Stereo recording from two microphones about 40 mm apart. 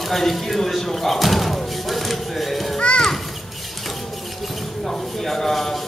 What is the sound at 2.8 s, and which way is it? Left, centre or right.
Children playing, left.